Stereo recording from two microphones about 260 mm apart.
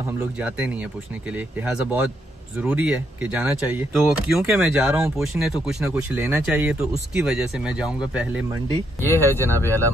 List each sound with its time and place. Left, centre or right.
0.2 s speech: centre
9.0 s speech: centre